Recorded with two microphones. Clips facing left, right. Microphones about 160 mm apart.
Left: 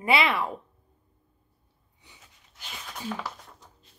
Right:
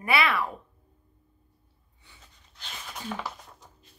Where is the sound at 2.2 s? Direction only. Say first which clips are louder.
Even; 5° left (ahead or behind).